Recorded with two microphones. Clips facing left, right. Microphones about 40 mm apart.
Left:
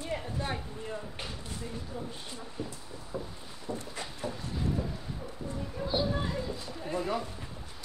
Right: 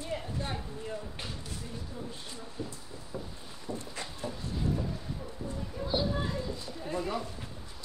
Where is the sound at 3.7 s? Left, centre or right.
Left.